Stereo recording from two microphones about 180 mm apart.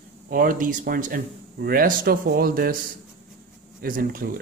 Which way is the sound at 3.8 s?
50° right (ahead or behind).